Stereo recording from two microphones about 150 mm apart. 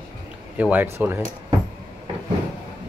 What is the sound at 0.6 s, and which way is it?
Speech, 10° right (ahead or behind).